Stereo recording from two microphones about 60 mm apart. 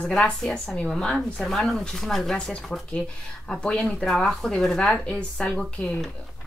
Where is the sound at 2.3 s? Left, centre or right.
Centre.